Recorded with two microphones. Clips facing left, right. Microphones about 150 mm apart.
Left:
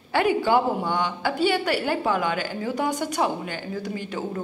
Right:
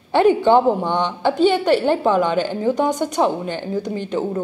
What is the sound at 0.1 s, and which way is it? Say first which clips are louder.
A woman's voice: right 7 dB; 25° right (ahead or behind).